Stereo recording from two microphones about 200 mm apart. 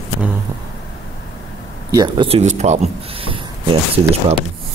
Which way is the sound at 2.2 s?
30° right (ahead or behind).